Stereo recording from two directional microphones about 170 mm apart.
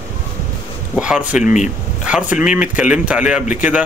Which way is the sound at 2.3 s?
5° right (ahead or behind).